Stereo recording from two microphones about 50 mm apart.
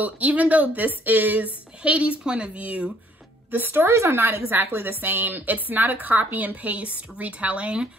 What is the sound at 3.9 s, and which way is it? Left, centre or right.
Speech, right.